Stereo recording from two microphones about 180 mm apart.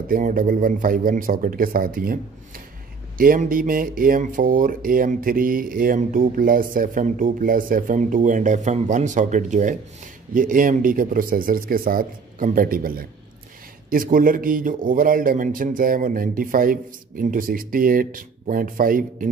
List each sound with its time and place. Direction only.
0.1 s speech: 50° right (ahead or behind)